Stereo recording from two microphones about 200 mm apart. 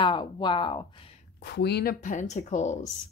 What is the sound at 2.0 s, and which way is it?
Speech, 35° left (ahead or behind).